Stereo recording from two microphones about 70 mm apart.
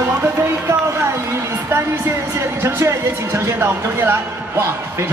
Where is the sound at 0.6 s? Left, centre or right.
Right.